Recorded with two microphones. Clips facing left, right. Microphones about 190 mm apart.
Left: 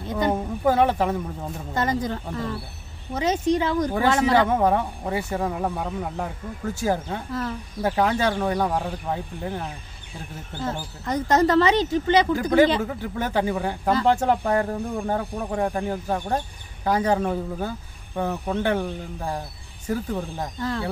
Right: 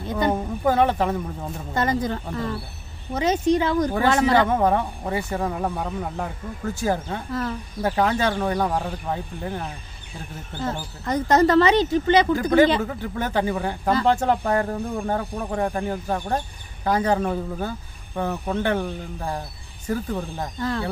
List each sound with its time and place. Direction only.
0.3 s a woman's voice: 10° left (ahead or behind)
1.8 s a woman's voice: 60° right (ahead or behind)
4.3 s speech: 10° left (ahead or behind)
11.1 s a woman's voice: 60° right (ahead or behind)
12.4 s speech: 10° left (ahead or behind)